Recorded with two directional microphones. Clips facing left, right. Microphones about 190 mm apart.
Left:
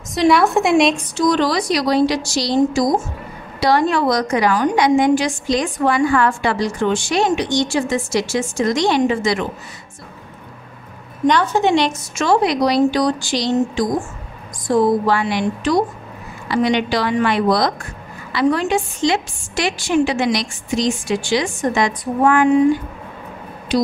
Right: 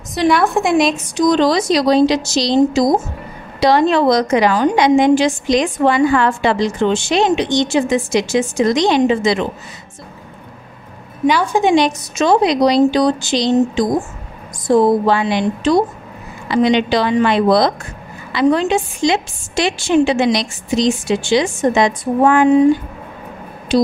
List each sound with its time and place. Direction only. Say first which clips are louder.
0.1 s a woman's voice: even; centre (ahead or behind)
1.1 s a woman's voice: right 3 dB; 20° right (ahead or behind)
11.2 s a woman's voice: right 1 dB; 10° right (ahead or behind)
23.7 s music: right 4 dB; 25° right (ahead or behind)